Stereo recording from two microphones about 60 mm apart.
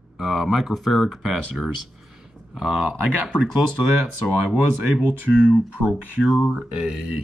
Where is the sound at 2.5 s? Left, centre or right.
Centre.